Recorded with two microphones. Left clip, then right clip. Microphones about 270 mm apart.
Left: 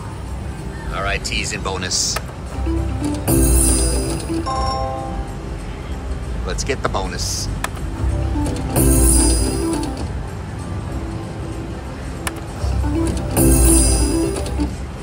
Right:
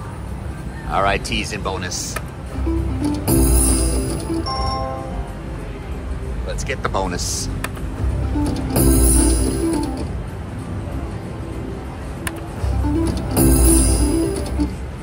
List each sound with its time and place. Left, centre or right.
0.9 s speech: centre
1.6 s speech: centre
3.0 s music: centre
6.4 s music: centre
6.8 s speech: centre
8.5 s music: centre
13.0 s music: centre